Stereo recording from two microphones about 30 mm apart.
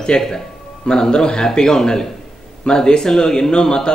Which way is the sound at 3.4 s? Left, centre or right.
Left.